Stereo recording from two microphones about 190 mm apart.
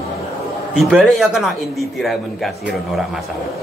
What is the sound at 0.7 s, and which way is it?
A man's voice, 5° right (ahead or behind).